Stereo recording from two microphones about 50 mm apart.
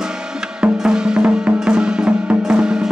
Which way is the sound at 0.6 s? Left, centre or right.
Centre.